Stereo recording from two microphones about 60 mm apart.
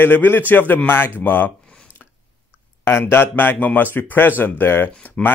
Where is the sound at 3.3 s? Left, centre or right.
Left.